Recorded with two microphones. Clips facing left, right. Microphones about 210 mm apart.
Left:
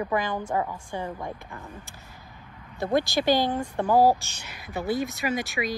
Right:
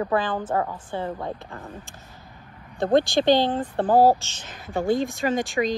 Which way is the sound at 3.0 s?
20° right (ahead or behind).